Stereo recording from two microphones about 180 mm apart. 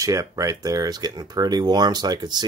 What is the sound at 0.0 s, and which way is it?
Speech, 20° right (ahead or behind).